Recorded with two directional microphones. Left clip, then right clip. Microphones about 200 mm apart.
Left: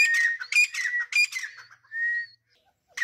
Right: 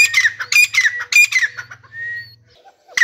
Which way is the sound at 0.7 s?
5° left (ahead or behind).